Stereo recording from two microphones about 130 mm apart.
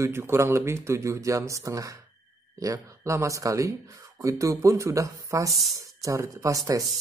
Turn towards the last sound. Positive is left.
turn(degrees=-25)  # may be behind; listen again after turning